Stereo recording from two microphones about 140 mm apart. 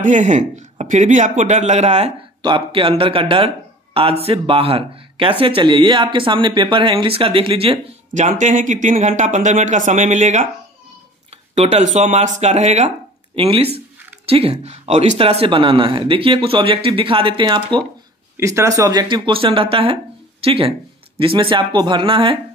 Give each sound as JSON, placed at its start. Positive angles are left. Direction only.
{"t": 0.0, "sound": "speech", "side_deg": -60}
{"t": 2.4, "sound": "speech", "side_deg": -35}
{"t": 8.1, "sound": "speech", "side_deg": -60}
{"t": 11.5, "sound": "speech", "side_deg": -55}
{"t": 18.4, "sound": "speech", "side_deg": -20}